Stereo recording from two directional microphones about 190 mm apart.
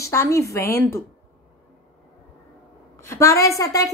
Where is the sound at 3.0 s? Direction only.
15° left (ahead or behind).